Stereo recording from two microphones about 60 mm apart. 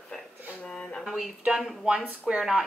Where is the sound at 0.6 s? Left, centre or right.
Centre.